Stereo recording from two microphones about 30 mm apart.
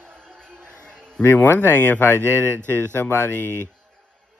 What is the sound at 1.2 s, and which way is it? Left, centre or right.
Speech, left.